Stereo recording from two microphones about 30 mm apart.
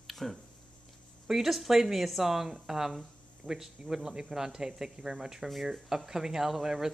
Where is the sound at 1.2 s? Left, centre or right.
Centre.